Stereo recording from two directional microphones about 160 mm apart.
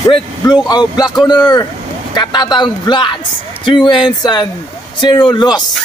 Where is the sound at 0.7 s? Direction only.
25° left (ahead or behind).